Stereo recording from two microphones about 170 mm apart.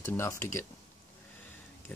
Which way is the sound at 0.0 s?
15° left (ahead or behind).